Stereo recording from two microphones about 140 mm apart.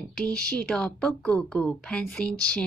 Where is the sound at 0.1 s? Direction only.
5° left (ahead or behind).